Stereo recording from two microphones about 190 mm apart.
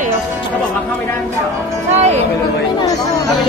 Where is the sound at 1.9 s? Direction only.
35° right (ahead or behind).